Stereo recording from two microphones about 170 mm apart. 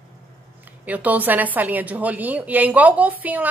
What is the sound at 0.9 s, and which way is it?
A woman's voice, 10° right (ahead or behind).